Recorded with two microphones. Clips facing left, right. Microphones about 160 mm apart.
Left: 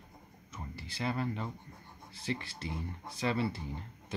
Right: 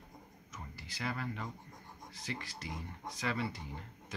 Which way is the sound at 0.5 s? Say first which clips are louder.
Left 5 dB; 30° left (ahead or behind).